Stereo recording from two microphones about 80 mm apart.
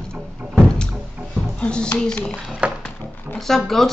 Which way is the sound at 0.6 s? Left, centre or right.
Centre.